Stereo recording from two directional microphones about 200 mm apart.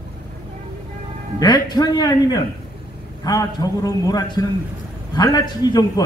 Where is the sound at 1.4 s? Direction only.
20° left (ahead or behind).